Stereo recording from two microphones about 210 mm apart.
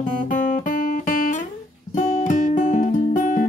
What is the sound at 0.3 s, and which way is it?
Guitar, 40° left (ahead or behind).